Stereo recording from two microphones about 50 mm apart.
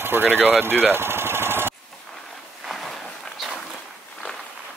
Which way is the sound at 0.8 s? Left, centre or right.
Right.